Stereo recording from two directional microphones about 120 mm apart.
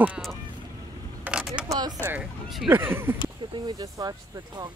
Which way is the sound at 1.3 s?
15° right (ahead or behind).